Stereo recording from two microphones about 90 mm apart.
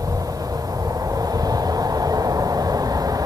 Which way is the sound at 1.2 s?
45° right (ahead or behind).